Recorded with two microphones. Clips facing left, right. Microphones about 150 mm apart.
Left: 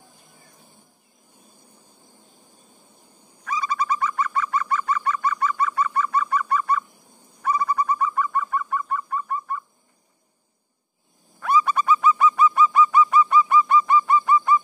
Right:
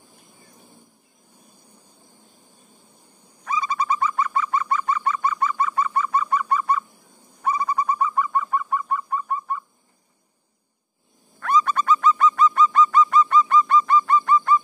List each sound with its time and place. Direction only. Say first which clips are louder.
3.4 s bird: right 1 dB; 25° right (ahead or behind)
11.3 s bird: even; 10° left (ahead or behind)